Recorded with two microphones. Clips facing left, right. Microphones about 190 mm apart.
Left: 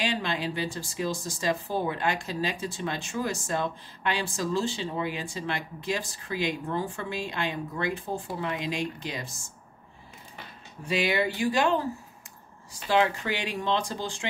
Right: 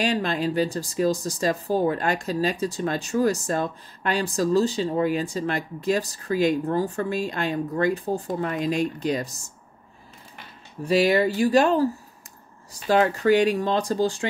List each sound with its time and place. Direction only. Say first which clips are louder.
0.0 s speech: right 6 dB; 40° right (ahead or behind)
10.9 s speech: right 7 dB; 40° right (ahead or behind)